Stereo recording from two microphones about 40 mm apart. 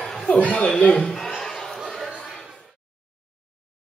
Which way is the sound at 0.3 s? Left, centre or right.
Left.